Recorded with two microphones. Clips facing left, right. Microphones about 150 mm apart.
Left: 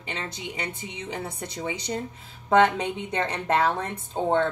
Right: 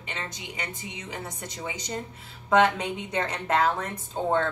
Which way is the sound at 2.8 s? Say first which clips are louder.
Left 2 dB; 30° left (ahead or behind).